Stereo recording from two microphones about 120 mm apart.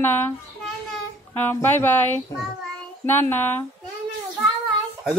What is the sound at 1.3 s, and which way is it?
Speech, 15° left (ahead or behind).